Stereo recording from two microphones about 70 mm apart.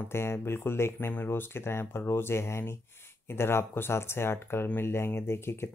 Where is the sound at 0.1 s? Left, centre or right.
Left.